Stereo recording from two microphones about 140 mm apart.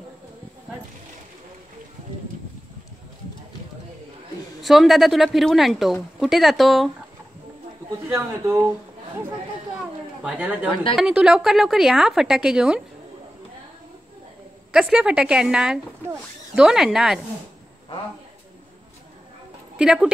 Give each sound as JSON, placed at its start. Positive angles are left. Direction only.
{"t": 4.6, "sound": "a woman's voice", "side_deg": 0}
{"t": 8.1, "sound": "a woman's voice", "side_deg": -20}
{"t": 10.2, "sound": "a woman's voice", "side_deg": -10}
{"t": 10.7, "sound": "a woman's voice", "side_deg": 40}
{"t": 11.0, "sound": "a woman's voice", "side_deg": -5}
{"t": 14.7, "sound": "a woman's voice", "side_deg": -5}
{"t": 19.8, "sound": "a woman's voice", "side_deg": -5}